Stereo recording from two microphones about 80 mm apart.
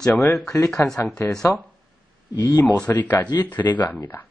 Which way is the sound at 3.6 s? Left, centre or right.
Left.